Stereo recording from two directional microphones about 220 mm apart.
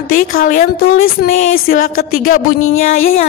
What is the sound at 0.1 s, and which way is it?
Speech, 40° left (ahead or behind).